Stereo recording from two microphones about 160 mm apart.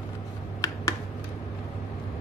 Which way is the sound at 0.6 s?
20° left (ahead or behind).